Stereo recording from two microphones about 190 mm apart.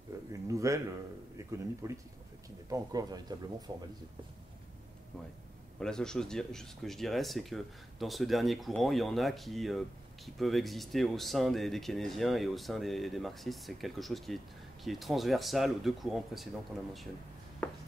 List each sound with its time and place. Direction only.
0.3 s speech: 15° right (ahead or behind)
5.8 s speech: 5° left (ahead or behind)
17.6 s writing: 5° left (ahead or behind)